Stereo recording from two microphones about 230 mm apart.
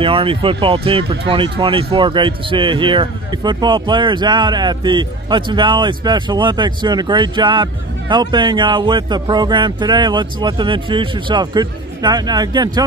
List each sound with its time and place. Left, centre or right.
0.0 s speech: right